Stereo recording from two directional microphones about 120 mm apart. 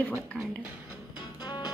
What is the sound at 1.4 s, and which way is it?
Music, 35° left (ahead or behind).